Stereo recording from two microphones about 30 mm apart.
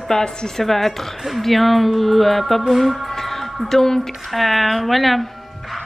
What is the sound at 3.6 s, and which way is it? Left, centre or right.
Speech, centre.